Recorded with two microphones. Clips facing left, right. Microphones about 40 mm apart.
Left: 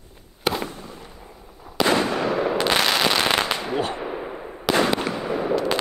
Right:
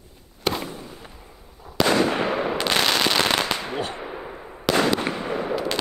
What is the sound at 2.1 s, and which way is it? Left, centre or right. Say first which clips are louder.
Gunshot: even; right.